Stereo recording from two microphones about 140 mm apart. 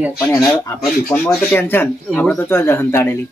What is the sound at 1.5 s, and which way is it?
Speech, 15° left (ahead or behind).